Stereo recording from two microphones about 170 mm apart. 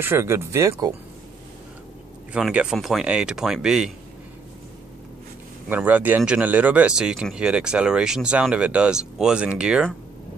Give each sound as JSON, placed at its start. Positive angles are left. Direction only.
{"t": 0.0, "sound": "speech", "side_deg": -15}
{"t": 2.3, "sound": "speech", "side_deg": -5}
{"t": 5.7, "sound": "speech", "side_deg": -10}